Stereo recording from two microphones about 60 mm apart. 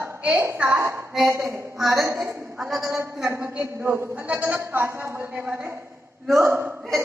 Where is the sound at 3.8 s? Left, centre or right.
Right.